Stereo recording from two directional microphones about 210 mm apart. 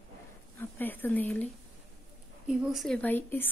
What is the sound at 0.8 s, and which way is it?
Speech, 10° left (ahead or behind).